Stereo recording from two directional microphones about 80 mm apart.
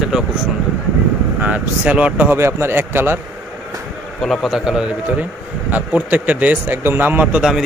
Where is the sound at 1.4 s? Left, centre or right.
Centre.